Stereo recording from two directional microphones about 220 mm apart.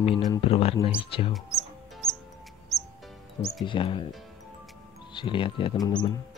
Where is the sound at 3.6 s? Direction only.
20° left (ahead or behind).